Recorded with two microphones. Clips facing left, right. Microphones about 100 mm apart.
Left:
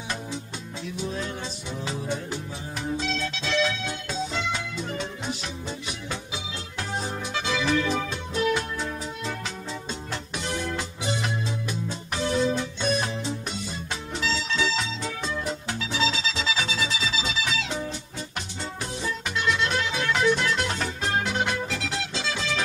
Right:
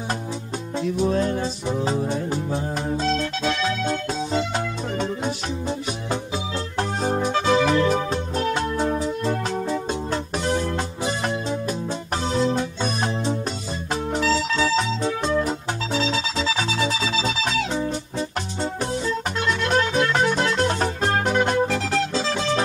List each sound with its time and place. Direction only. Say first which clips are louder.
0.8 s music: right 10 dB; 45° right (ahead or behind)
6.8 s music: right 8 dB; 45° right (ahead or behind)
12.8 s music: right 1 dB; 40° right (ahead or behind)
14.1 s music: right 6 dB; 45° right (ahead or behind)
19.3 s music: right 3 dB; 45° right (ahead or behind)